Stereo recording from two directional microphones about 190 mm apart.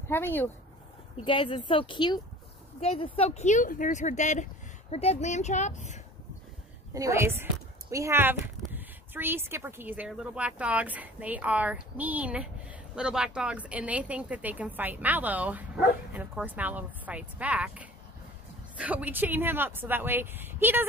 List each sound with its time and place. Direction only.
0.1 s speech: 10° left (ahead or behind)
1.1 s speech: 30° left (ahead or behind)
6.9 s a woman's voice: 15° right (ahead or behind)